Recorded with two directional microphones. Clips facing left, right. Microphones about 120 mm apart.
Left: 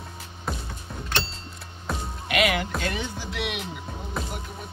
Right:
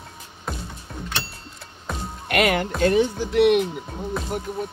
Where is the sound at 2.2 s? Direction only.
50° right (ahead or behind).